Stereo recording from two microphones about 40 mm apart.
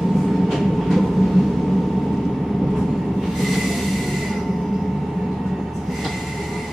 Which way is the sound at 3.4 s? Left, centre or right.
Centre.